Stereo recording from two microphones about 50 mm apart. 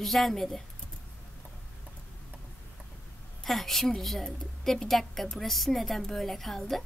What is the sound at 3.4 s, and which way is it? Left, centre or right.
A woman's voice, centre.